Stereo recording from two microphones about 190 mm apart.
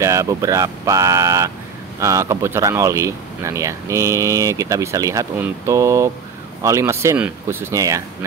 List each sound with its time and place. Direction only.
0.0 s speech: 15° right (ahead or behind)